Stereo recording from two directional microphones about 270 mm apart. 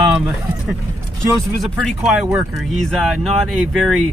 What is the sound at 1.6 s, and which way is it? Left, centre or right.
Speech, centre.